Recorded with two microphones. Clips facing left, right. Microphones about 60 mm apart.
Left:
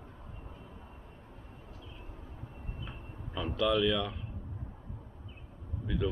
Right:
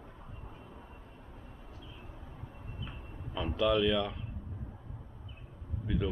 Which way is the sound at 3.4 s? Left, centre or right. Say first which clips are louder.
Even; centre.